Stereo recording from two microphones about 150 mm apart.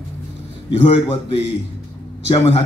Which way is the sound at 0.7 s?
40° left (ahead or behind).